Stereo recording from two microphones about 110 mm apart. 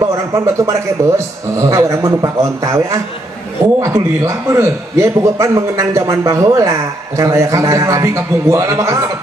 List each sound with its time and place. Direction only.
0.0 s a man's voice: 30° right (ahead or behind)